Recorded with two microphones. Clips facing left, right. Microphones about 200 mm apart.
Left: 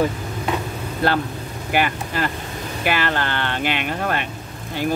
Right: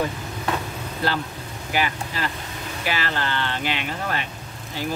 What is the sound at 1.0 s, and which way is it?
Speech, 55° left (ahead or behind).